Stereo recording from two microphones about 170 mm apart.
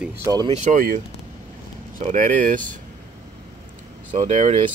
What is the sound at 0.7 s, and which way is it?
Speech, 50° right (ahead or behind).